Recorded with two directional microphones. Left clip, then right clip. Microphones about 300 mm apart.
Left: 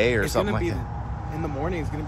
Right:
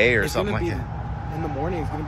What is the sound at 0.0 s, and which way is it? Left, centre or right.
Speech, centre.